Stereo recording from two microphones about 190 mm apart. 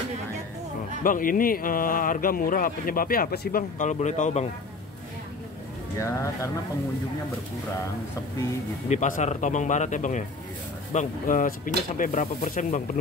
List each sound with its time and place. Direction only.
1.0 s speech: 45° left (ahead or behind)
5.9 s speech: 15° left (ahead or behind)
8.8 s speech: 40° left (ahead or behind)